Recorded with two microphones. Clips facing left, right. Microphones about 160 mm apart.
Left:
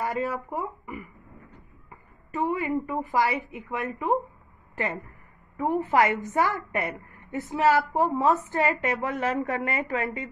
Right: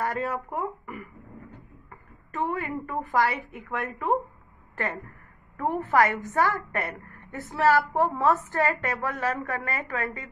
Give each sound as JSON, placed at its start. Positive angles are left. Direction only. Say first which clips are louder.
{"t": 0.0, "sound": "speech", "louder": "even", "side_deg": 0}
{"t": 2.5, "sound": "a woman's voice", "louder": "left 3 dB", "side_deg": 15}